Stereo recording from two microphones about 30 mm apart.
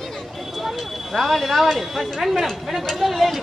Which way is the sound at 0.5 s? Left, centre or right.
Centre.